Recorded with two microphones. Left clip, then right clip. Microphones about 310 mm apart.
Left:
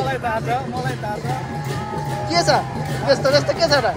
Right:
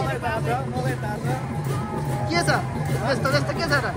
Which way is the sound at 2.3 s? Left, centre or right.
Centre.